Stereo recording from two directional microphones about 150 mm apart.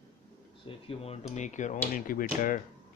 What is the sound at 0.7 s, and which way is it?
Speech, 35° left (ahead or behind).